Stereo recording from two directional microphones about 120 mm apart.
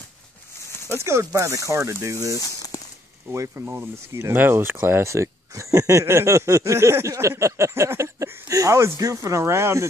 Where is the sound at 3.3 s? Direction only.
25° right (ahead or behind).